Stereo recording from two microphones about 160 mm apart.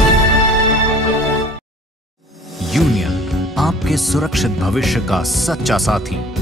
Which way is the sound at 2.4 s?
Centre (ahead or behind).